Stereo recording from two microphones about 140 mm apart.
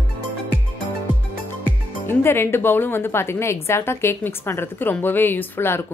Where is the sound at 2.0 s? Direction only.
15° left (ahead or behind).